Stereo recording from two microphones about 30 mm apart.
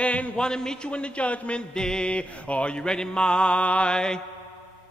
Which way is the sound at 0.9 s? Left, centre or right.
Left.